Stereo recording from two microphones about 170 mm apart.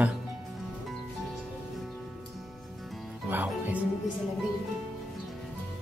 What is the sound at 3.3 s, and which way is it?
Music, 10° right (ahead or behind).